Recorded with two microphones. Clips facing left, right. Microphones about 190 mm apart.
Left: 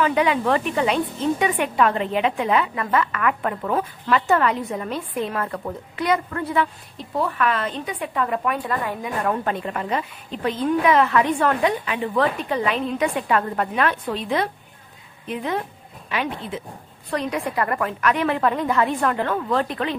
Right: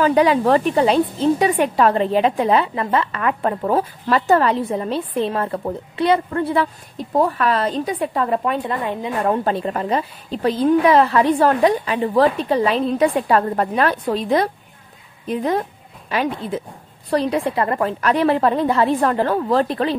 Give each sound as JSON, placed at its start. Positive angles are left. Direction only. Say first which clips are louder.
{"t": 0.0, "sound": "a woman's voice", "louder": "right 5 dB", "side_deg": -35}